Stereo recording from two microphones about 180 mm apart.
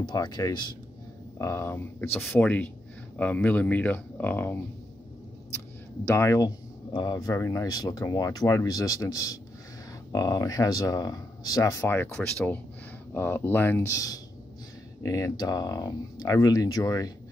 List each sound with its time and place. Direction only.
0.0 s speech: 25° left (ahead or behind)
6.1 s speech: 15° left (ahead or behind)